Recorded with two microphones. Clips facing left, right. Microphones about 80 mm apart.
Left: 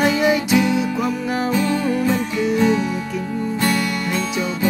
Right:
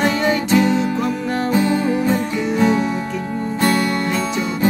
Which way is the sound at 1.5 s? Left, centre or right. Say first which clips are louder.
Right 4 dB; right.